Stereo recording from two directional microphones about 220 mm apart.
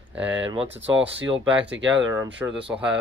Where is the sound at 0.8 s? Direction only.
55° right (ahead or behind).